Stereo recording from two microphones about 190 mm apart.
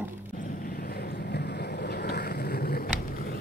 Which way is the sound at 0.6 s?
50° left (ahead or behind).